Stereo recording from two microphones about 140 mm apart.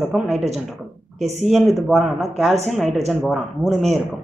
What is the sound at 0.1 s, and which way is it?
Speech, 5° right (ahead or behind).